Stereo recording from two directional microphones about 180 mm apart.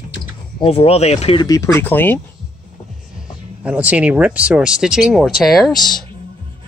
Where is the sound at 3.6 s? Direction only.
10° right (ahead or behind).